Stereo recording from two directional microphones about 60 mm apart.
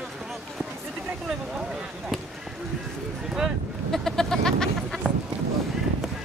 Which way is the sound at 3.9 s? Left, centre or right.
Centre.